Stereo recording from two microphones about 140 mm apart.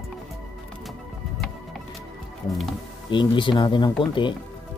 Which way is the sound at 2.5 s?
Centre (ahead or behind).